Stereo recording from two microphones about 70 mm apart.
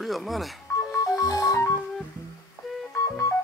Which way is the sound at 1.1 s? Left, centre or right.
Left.